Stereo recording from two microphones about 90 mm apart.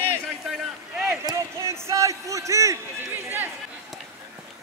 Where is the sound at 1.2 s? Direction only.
30° right (ahead or behind).